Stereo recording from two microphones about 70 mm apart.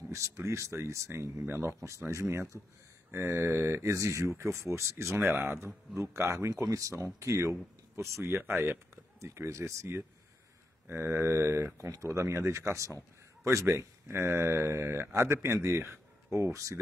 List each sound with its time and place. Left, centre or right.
0.1 s a man's voice: right
6.5 s a man's voice: right
9.2 s a man's voice: right